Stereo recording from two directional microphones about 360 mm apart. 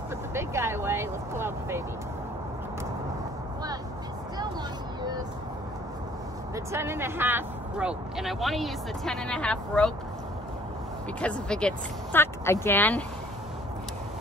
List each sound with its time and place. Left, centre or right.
0.3 s vehicle: centre
6.5 s speech: centre
11.1 s speech: centre